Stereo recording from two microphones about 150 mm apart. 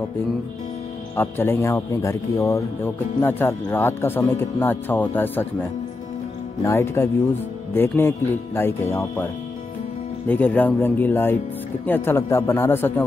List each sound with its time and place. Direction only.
1.1 s speech: 15° left (ahead or behind)